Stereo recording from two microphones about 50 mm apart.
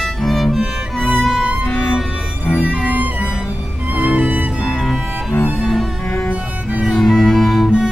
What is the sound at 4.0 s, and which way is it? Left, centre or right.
Music, right.